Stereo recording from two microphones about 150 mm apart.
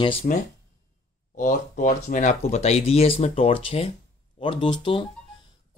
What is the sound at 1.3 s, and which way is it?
Speech, 60° left (ahead or behind).